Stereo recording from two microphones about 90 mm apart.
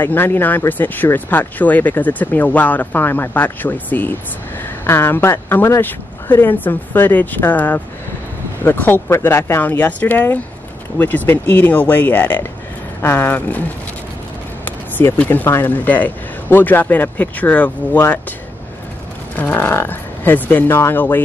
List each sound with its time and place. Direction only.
0.0 s speech: 25° left (ahead or behind)
14.6 s speech: 20° left (ahead or behind)
19.3 s speech: 20° left (ahead or behind)